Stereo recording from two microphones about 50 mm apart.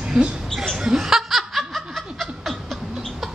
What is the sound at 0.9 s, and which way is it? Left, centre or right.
Laughter, centre.